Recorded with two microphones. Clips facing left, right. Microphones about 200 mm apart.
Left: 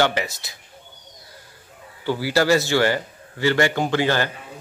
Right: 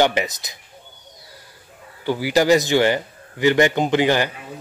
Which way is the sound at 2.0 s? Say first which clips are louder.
Right 2 dB; 15° right (ahead or behind).